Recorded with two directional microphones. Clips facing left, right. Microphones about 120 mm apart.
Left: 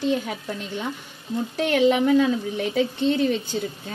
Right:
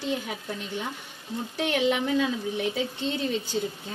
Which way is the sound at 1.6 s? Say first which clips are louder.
Left 6 dB; 50° left (ahead or behind).